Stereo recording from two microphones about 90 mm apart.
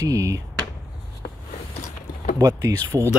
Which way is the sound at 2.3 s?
40° right (ahead or behind).